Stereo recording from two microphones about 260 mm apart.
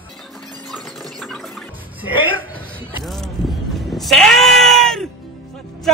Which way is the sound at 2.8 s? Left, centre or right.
Centre.